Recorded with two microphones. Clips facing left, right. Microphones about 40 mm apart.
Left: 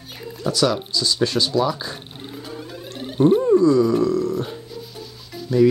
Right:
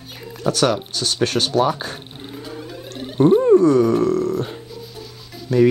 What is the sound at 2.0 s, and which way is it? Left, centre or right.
Music, centre.